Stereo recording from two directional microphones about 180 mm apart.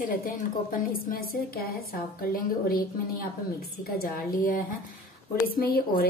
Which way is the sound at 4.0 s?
50° left (ahead or behind).